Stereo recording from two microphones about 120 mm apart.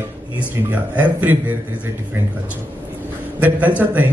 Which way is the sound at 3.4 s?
15° right (ahead or behind).